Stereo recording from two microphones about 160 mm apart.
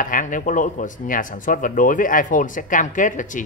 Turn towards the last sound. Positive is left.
turn(degrees=55)  # may be behind; listen again after turning